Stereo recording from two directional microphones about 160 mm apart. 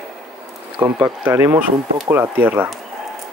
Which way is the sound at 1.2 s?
15° right (ahead or behind).